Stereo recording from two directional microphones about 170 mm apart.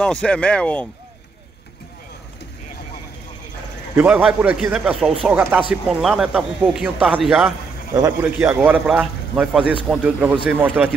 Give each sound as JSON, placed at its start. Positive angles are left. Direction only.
{"t": 0.0, "sound": "speech", "side_deg": 5}
{"t": 3.9, "sound": "speech", "side_deg": -10}
{"t": 7.4, "sound": "a sound", "side_deg": -20}
{"t": 8.2, "sound": "speech", "side_deg": -10}